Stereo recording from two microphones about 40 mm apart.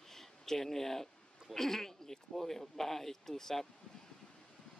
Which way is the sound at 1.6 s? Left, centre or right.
Centre.